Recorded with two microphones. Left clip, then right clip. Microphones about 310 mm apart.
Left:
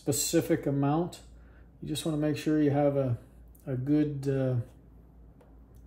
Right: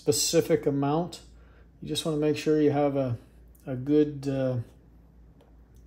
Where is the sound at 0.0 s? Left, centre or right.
Right.